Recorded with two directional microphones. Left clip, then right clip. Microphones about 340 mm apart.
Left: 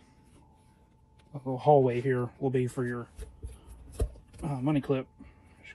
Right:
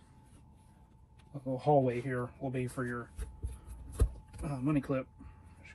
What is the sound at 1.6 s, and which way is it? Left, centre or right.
Speech, centre.